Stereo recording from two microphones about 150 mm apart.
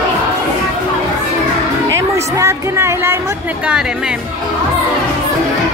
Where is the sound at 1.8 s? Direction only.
20° right (ahead or behind).